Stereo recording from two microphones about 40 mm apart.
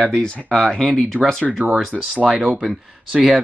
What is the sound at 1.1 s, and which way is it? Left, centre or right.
Speech, right.